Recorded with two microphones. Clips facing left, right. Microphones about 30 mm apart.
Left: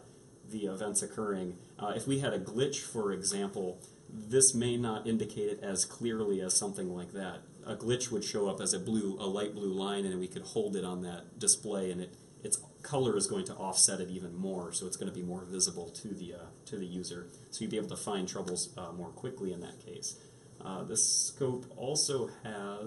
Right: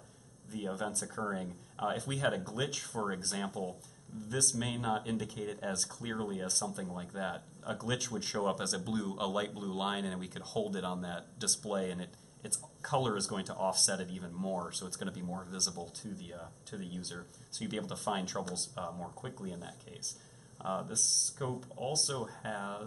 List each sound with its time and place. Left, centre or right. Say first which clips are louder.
0.5 s speech: left 1 dB; centre
15.2 s speech: left 1 dB; centre